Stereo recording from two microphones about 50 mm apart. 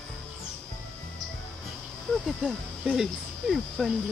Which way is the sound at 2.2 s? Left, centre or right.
Centre.